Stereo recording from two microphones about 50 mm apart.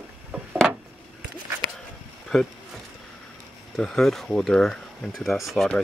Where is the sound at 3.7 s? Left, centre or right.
Centre.